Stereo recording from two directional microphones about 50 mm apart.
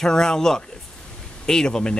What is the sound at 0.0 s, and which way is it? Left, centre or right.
Speech, centre.